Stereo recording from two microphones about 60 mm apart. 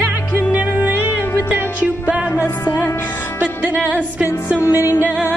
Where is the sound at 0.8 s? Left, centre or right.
Right.